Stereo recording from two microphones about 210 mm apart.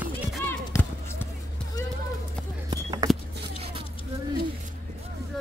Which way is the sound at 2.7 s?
20° right (ahead or behind).